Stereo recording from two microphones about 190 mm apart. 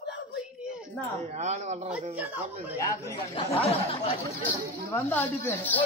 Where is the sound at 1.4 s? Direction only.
35° right (ahead or behind).